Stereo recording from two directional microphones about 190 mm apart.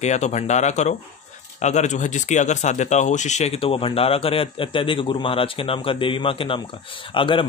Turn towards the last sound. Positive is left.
turn(degrees=25)  # may be behind; listen again after turning